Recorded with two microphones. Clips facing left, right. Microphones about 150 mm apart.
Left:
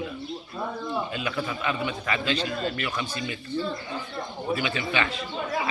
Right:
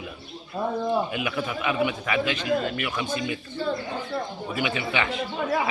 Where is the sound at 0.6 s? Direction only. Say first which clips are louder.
Right 5 dB; 40° right (ahead or behind).